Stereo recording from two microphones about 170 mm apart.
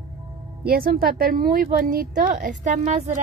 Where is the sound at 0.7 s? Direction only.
60° right (ahead or behind).